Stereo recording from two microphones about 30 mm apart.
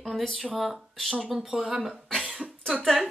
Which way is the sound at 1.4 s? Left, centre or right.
Centre.